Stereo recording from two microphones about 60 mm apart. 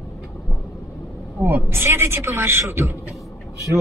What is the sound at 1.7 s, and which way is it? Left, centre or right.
A man's voice, right.